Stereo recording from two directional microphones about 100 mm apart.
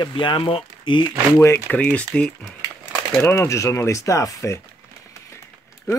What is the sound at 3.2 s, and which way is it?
Speech, 25° left (ahead or behind).